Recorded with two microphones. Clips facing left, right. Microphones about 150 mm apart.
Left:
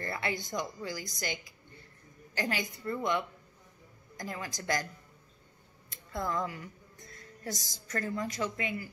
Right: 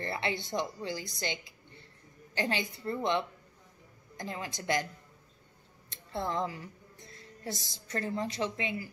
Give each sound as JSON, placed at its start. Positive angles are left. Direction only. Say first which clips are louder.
{"t": 0.0, "sound": "a woman's voice", "louder": "right 1 dB", "side_deg": -25}
{"t": 5.9, "sound": "a woman's voice", "louder": "even", "side_deg": -30}